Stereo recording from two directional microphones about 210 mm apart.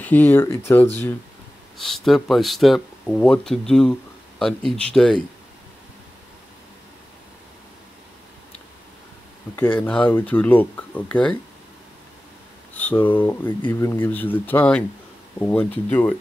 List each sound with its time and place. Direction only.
0.0 s speech: 10° left (ahead or behind)
1.8 s speech: centre (ahead or behind)
9.6 s speech: 10° left (ahead or behind)
12.7 s speech: 10° left (ahead or behind)